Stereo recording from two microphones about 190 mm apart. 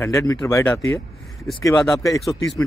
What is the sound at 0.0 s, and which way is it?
Speech, 15° left (ahead or behind).